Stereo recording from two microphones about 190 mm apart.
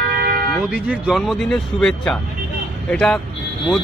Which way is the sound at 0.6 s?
5° right (ahead or behind).